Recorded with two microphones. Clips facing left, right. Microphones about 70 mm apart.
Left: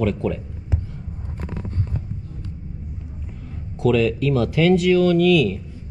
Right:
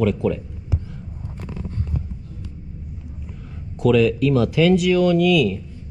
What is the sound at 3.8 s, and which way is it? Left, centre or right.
Speech, left.